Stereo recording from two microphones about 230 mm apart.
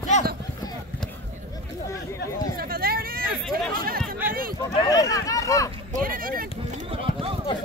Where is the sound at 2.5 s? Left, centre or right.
Right.